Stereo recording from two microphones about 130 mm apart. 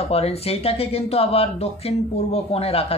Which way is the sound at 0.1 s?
50° left (ahead or behind).